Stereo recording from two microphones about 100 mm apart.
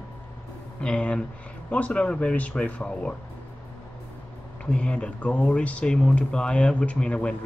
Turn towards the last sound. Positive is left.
turn(degrees=10)  # may be behind; listen again after turning